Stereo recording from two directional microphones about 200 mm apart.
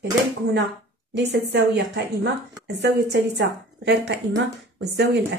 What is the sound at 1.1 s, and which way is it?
Speech, 60° right (ahead or behind).